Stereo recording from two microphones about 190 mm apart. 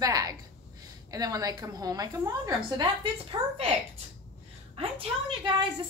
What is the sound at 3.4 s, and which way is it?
Speech, 30° right (ahead or behind).